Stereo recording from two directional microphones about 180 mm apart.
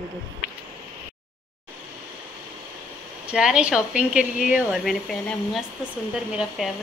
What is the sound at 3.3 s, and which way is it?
Speech, 5° right (ahead or behind).